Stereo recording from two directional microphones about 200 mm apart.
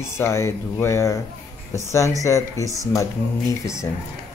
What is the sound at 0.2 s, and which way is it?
Speech, 15° left (ahead or behind).